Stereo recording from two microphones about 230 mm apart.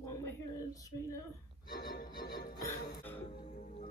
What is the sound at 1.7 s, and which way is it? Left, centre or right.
Music, left.